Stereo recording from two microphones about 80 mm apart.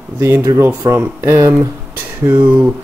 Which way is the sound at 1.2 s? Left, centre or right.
Right.